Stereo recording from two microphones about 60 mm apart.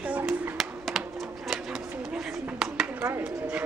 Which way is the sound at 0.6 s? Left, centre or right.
Centre.